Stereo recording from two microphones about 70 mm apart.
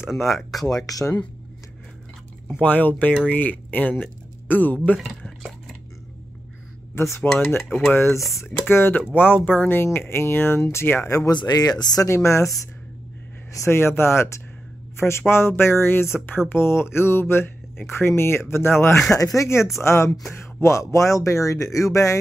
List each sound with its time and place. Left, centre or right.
0.0 s speech: centre
0.7 s speech: left
2.6 s speech: left
7.3 s speech: left
11.2 s speech: left
12.1 s speech: left
13.7 s speech: left
19.1 s speech: left